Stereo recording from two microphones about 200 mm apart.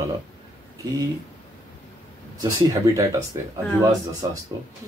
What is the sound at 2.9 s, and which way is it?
Speech, 15° right (ahead or behind).